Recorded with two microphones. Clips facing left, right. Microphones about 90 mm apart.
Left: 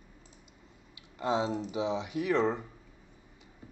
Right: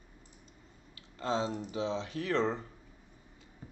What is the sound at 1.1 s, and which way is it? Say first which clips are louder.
Speech: left 3 dB; 15° left (ahead or behind).